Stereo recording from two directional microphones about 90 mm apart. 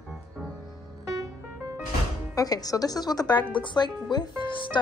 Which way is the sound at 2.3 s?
45° left (ahead or behind).